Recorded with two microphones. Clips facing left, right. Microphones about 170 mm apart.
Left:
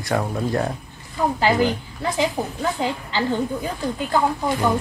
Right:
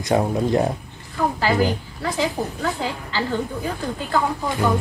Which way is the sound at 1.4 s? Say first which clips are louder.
Left 2 dB; 20° left (ahead or behind).